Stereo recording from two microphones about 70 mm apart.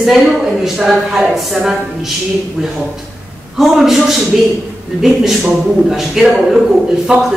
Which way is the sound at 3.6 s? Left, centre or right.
Centre.